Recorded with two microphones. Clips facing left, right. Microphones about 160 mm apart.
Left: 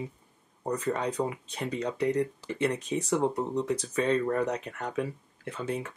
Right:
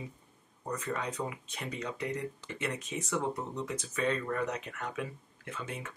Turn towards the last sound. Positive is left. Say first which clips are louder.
# left 8 dB
turn(degrees=35)  # may be behind; listen again after turning